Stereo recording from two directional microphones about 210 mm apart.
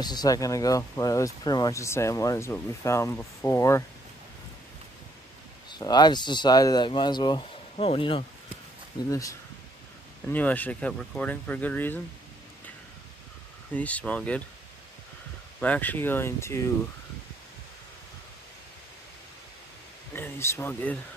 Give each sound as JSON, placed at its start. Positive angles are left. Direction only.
{"t": 0.0, "sound": "speech", "side_deg": 20}
{"t": 5.7, "sound": "speech", "side_deg": 20}
{"t": 9.1, "sound": "speech", "side_deg": 15}
{"t": 13.7, "sound": "speech", "side_deg": 5}
{"t": 15.6, "sound": "speech", "side_deg": 10}
{"t": 20.1, "sound": "speech", "side_deg": 10}